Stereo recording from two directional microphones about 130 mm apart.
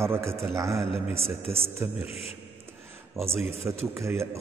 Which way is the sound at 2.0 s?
50° left (ahead or behind).